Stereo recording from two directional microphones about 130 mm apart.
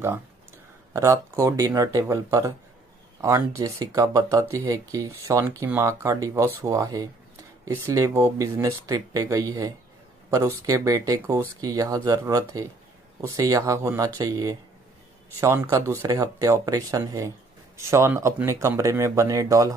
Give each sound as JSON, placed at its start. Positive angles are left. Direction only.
{"t": 0.9, "sound": "speech", "side_deg": -20}